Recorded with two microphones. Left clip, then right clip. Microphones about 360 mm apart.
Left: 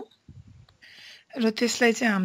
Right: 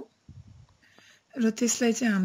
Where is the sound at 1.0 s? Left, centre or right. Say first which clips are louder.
Left 2 dB; centre.